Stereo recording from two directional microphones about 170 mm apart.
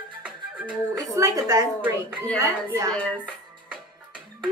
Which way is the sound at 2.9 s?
10° left (ahead or behind).